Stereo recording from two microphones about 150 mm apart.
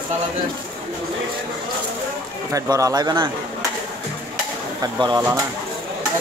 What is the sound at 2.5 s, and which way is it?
Speech, 20° right (ahead or behind).